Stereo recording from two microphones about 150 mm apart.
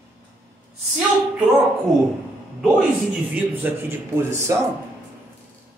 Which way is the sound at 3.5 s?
15° right (ahead or behind).